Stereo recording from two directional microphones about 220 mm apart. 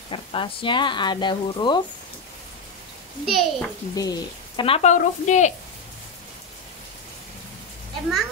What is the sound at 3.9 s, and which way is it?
Speech, 15° left (ahead or behind).